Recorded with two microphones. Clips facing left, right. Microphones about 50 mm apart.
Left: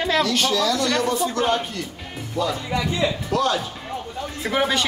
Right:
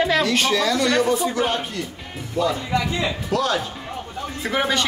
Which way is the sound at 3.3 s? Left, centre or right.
Centre.